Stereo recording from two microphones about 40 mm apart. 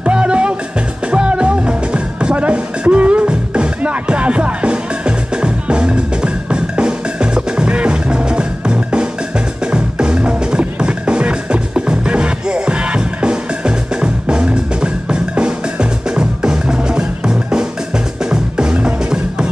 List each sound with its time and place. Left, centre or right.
0.0 s music: right